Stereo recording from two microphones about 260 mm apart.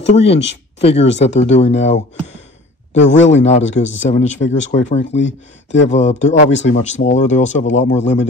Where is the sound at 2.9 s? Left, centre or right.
Left.